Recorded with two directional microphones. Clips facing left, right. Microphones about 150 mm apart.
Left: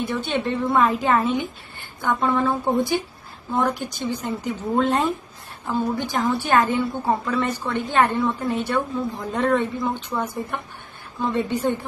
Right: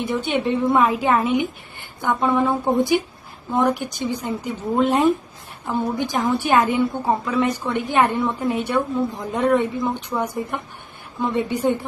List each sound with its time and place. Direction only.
0.0 s a woman's voice: 15° right (ahead or behind)